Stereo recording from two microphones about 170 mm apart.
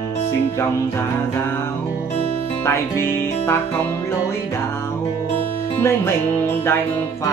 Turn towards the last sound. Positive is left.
turn(degrees=15)  # may be behind; listen again after turning